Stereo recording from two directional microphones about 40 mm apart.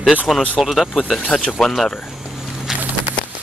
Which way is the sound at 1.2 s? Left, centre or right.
Centre.